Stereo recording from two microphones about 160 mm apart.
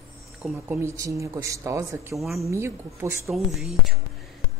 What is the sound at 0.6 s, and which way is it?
Speech, 15° right (ahead or behind).